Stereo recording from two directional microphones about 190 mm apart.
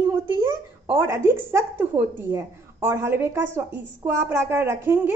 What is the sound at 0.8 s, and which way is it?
A woman's voice, 15° right (ahead or behind).